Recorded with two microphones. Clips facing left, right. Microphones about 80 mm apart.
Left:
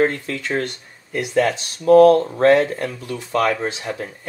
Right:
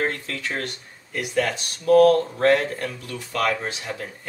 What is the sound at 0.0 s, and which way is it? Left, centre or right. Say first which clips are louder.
Speech: left 7 dB; left.